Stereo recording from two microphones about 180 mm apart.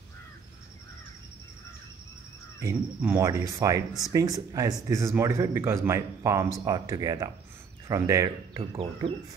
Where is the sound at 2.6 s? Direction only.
15° right (ahead or behind).